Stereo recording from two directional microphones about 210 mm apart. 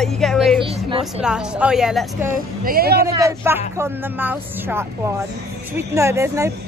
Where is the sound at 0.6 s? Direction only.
25° right (ahead or behind).